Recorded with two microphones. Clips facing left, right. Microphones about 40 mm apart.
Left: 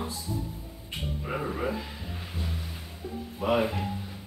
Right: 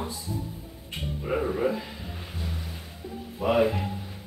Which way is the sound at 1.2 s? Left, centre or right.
Centre.